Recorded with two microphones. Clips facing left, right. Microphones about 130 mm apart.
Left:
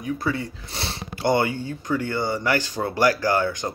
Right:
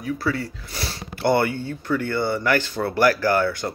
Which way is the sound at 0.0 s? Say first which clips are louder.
Right 1 dB; 20° left (ahead or behind).